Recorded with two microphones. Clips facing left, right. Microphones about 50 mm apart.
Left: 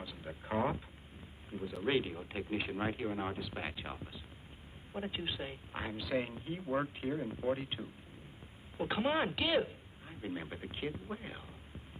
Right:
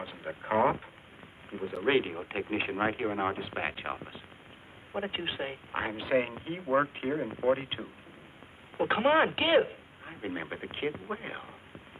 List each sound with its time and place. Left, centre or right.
0.0 s speech: right